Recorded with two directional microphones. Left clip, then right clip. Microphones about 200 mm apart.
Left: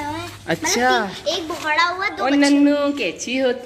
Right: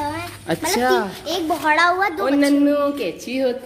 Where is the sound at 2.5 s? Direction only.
5° right (ahead or behind).